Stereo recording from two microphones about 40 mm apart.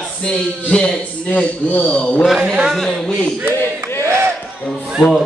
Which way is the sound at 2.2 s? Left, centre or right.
Centre.